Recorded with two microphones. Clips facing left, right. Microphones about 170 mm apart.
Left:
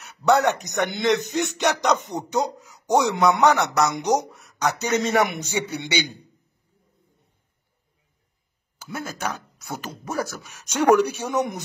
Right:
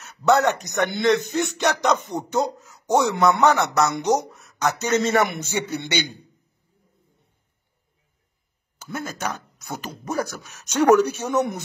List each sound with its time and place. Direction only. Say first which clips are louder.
0.4 s speech: right 1 dB; 15° left (ahead or behind)
8.7 s speech: right 1 dB; 5° left (ahead or behind)